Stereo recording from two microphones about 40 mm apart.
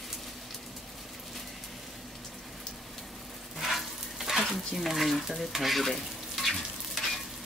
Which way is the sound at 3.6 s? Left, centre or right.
Centre.